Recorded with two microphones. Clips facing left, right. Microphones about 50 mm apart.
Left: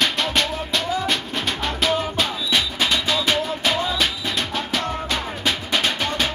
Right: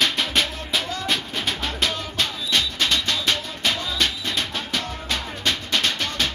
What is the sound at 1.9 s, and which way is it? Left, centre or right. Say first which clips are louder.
Music: left 5 dB; centre.